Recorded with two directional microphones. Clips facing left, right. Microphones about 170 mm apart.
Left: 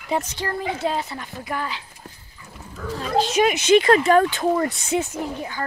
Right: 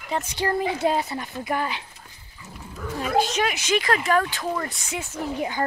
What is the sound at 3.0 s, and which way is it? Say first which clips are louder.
Speech: even; 10° right (ahead or behind).